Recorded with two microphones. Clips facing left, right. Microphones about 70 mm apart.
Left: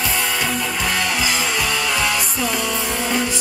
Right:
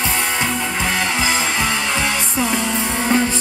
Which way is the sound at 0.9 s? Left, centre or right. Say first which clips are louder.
Right 2 dB; right.